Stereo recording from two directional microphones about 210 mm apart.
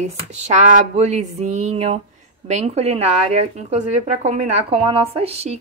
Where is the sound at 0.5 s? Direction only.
35° right (ahead or behind).